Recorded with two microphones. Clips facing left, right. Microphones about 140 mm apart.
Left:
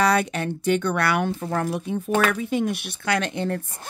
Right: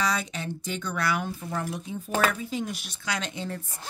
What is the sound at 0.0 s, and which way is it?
Speech, 60° left (ahead or behind).